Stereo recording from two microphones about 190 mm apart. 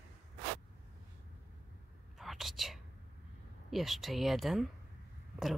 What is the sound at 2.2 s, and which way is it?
Whispering, centre (ahead or behind).